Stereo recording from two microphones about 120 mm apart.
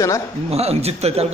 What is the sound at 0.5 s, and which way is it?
Speech, 60° right (ahead or behind).